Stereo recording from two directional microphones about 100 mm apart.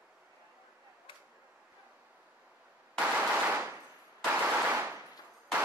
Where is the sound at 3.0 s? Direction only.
10° right (ahead or behind).